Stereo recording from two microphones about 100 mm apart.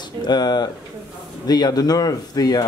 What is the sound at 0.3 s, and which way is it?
Speech, 45° left (ahead or behind).